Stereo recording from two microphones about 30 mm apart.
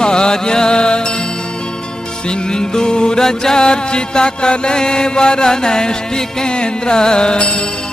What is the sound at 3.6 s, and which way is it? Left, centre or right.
Mantra, left.